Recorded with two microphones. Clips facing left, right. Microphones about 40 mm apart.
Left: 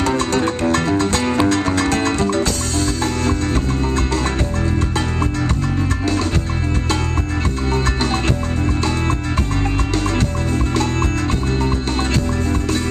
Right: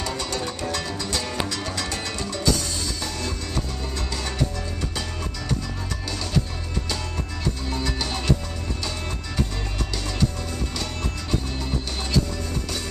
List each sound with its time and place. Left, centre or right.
0.0 s music: left
7.7 s music: left